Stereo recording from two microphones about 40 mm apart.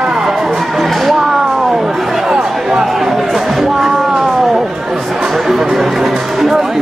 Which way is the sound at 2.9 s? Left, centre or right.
Centre.